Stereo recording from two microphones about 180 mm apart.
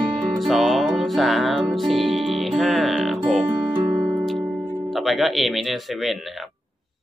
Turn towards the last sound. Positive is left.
turn(degrees=0)  # may be behind; listen again after turning